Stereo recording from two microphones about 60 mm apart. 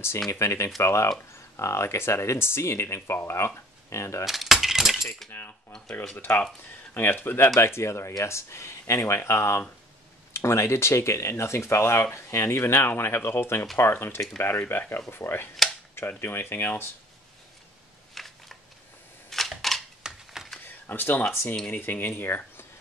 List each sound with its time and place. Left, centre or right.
0.3 s speech: left
4.3 s keys jangling: centre
5.3 s speech: left
18.2 s a sound: centre
19.3 s camera: centre
20.0 s a sound: centre
20.6 s speech: left